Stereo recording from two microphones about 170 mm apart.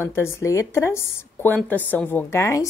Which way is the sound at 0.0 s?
15° left (ahead or behind).